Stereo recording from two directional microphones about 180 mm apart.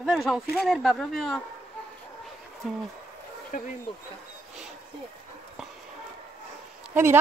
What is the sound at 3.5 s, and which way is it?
Speech, 50° left (ahead or behind).